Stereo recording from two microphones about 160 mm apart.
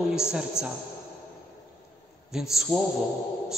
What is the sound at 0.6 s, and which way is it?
Speech, 15° left (ahead or behind).